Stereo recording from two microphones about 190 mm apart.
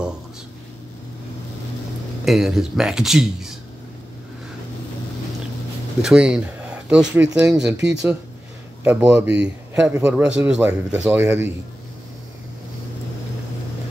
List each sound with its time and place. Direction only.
2.2 s speech: centre (ahead or behind)
6.0 s speech: 5° right (ahead or behind)
7.7 s speech: 65° right (ahead or behind)
8.8 s speech: 5° right (ahead or behind)